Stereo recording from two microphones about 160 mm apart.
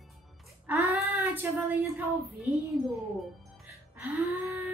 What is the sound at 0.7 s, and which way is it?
A woman's voice, 10° right (ahead or behind).